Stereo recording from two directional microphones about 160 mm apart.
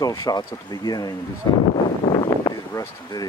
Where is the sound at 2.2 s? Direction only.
20° left (ahead or behind).